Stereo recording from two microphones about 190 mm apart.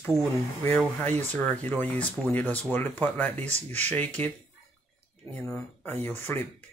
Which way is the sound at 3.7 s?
10° left (ahead or behind).